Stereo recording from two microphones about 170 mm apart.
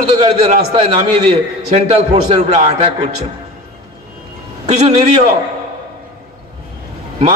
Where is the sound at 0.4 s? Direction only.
35° right (ahead or behind).